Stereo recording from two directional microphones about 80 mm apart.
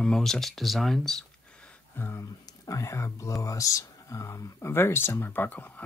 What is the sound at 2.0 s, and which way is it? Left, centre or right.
Speech, left.